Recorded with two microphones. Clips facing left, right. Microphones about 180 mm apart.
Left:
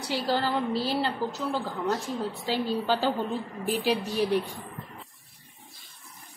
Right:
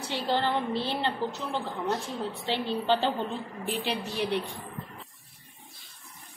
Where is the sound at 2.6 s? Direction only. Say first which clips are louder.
Even; 5° left (ahead or behind).